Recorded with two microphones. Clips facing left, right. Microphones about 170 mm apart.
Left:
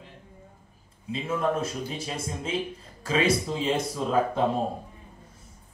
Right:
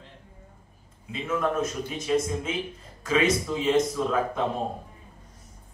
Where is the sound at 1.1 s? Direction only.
30° left (ahead or behind).